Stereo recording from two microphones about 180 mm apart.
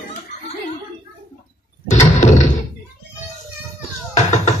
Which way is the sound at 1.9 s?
40° left (ahead or behind).